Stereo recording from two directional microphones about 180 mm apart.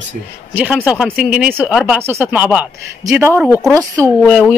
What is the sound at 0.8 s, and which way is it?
Speech, 5° right (ahead or behind).